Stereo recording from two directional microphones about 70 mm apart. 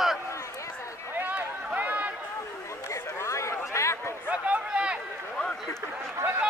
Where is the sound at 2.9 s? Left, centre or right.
Left.